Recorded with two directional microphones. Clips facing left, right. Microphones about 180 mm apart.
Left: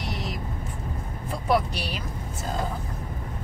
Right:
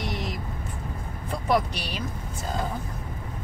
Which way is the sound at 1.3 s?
5° left (ahead or behind).